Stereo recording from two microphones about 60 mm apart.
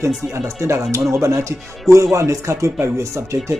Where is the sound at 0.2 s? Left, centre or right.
Right.